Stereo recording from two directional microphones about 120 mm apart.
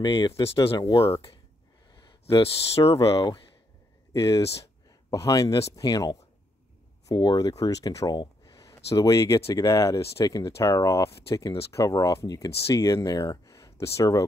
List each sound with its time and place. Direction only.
0.0 s speech: 40° left (ahead or behind)
0.3 s speech: 55° left (ahead or behind)
0.6 s speech: 40° left (ahead or behind)
2.4 s speech: 55° left (ahead or behind)
4.1 s speech: 30° left (ahead or behind)
7.2 s speech: 35° left (ahead or behind)